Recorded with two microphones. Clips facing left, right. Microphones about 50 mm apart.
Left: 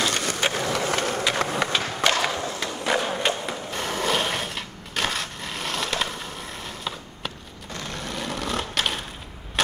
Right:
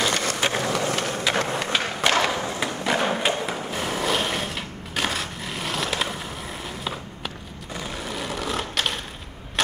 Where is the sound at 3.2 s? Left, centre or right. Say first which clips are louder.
Right 1 dB; centre.